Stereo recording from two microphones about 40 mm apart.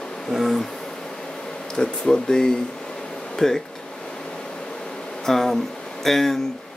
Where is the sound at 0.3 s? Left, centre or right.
Centre.